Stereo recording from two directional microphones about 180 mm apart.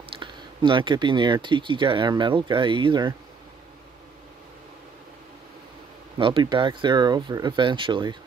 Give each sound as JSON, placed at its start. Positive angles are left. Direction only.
{"t": 0.1, "sound": "speech", "side_deg": -25}
{"t": 6.1, "sound": "speech", "side_deg": -30}